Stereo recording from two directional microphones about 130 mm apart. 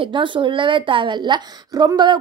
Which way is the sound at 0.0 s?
40° right (ahead or behind).